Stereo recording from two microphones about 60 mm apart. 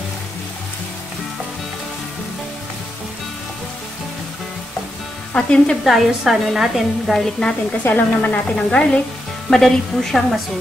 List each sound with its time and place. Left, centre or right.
5.3 s sizzle: centre
5.9 s a woman's voice: centre
7.8 s speech: left
8.5 s sizzle: centre
9.5 s a woman's voice: centre